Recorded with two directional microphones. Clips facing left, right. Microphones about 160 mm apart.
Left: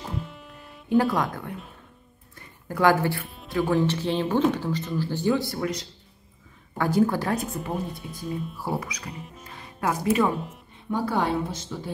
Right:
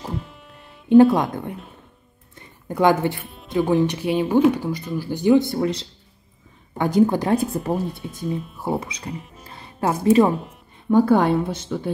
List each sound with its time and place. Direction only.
0.2 s music: centre (ahead or behind)
1.1 s a woman's voice: 20° right (ahead or behind)
2.3 s music: 20° right (ahead or behind)
3.4 s a woman's voice: 20° right (ahead or behind)
7.5 s a woman's voice: 35° right (ahead or behind)
9.4 s music: 35° right (ahead or behind)
10.3 s speech: centre (ahead or behind)
10.9 s speech: 50° right (ahead or behind)